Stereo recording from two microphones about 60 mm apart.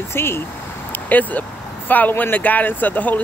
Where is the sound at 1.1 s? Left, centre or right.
Left.